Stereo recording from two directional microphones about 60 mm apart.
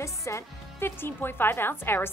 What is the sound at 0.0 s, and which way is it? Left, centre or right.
A woman's voice, left.